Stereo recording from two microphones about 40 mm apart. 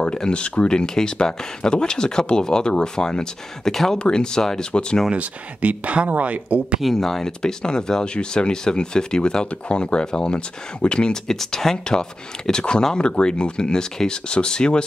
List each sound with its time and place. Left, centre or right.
0.0 s speech: left
3.6 s speech: centre
4.0 s speech: centre
5.1 s speech: right
6.8 s speech: centre
11.3 s speech: centre